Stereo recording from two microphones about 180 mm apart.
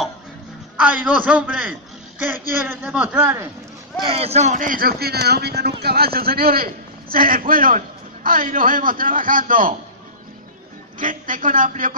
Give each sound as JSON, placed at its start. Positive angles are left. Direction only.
{"t": 0.7, "sound": "a man's voice", "side_deg": -5}
{"t": 4.0, "sound": "a man's voice", "side_deg": -30}
{"t": 11.0, "sound": "a man's voice", "side_deg": -50}